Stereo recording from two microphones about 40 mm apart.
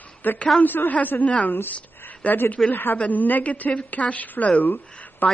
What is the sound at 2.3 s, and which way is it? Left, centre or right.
A woman's voice, left.